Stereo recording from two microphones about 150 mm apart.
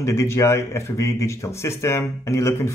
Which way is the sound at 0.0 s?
20° left (ahead or behind).